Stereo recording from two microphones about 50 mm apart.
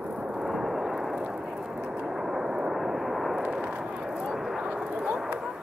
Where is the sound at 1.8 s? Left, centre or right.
Centre.